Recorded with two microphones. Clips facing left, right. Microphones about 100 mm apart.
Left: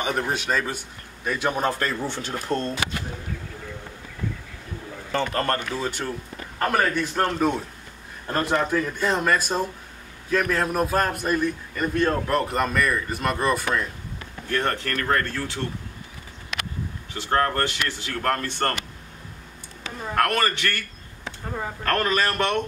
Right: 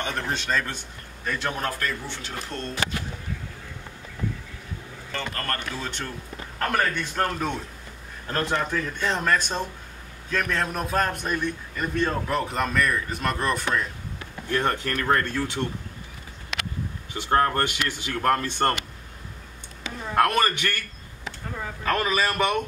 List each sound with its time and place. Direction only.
0.0 s a man's voice: 10° left (ahead or behind)
2.0 s speech: 45° left (ahead or behind)
5.1 s a man's voice: 25° left (ahead or behind)
5.8 s a man's voice: 10° left (ahead or behind)
14.5 s speech: 15° right (ahead or behind)
17.1 s speech: 15° right (ahead or behind)
20.2 s speech: 15° right (ahead or behind)
21.8 s a man's voice: 5° right (ahead or behind)